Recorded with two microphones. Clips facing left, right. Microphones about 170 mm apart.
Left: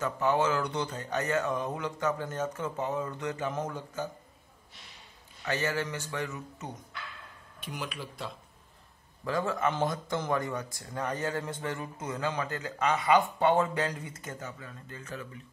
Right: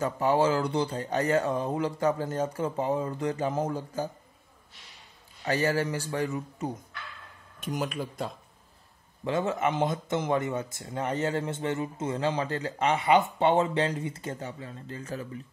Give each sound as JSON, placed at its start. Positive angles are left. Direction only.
{"t": 0.0, "sound": "speech", "side_deg": -30}
{"t": 5.4, "sound": "speech", "side_deg": -35}
{"t": 7.6, "sound": "speech", "side_deg": -45}
{"t": 9.2, "sound": "speech", "side_deg": -25}